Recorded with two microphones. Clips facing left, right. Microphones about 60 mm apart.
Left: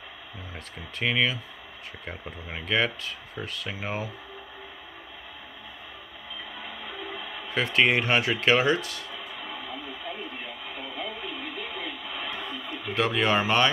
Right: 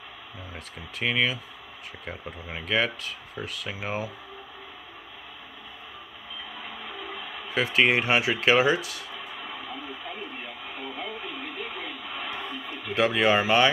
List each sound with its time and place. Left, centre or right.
0.9 s speech: centre
7.4 s a sound: centre
12.3 s radio: centre
12.6 s speech: centre